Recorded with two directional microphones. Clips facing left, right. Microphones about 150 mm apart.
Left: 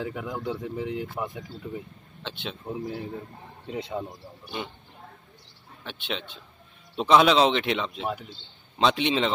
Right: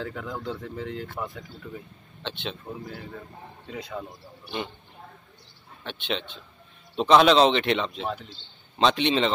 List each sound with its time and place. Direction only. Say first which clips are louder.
0.0 s speech: left 2 dB; 15° left (ahead or behind)
2.2 s speech: right 2 dB; 5° left (ahead or behind)
2.6 s speech: left 5 dB; 20° left (ahead or behind)
4.6 s speech: right 2 dB; centre (ahead or behind)
5.9 s speech: right 3 dB; 5° left (ahead or behind)